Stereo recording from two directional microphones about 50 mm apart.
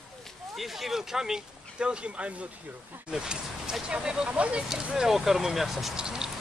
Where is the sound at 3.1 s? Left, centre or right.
Centre.